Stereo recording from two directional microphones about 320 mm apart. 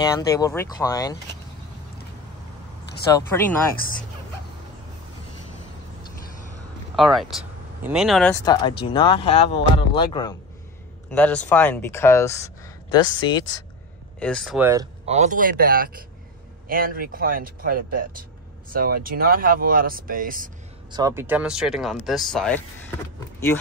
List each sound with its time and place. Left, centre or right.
0.0 s speech: centre
3.1 s speech: centre
7.0 s speech: centre
8.8 s speech: centre
14.2 s speech: centre
15.0 s speech: right
20.9 s speech: centre